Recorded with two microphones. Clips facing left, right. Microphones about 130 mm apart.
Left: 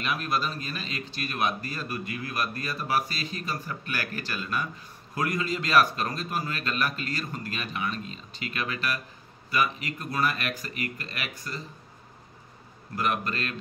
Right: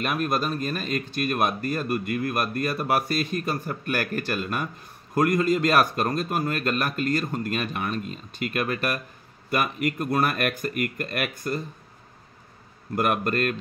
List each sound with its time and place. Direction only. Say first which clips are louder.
0.0 s speech: right 4 dB; 50° right (ahead or behind)
12.9 s speech: right 5 dB; 55° right (ahead or behind)